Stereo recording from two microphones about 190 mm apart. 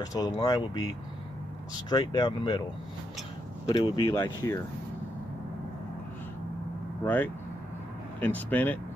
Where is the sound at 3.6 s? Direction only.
20° left (ahead or behind).